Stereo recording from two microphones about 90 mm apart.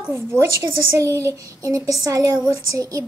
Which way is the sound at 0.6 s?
35° right (ahead or behind).